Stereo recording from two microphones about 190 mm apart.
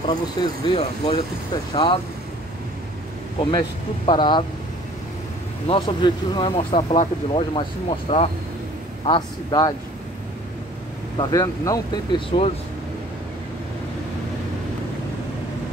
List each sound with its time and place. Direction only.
0.1 s speech: 25° left (ahead or behind)
3.3 s speech: 25° left (ahead or behind)
5.7 s speech: 25° left (ahead or behind)
11.1 s speech: 20° left (ahead or behind)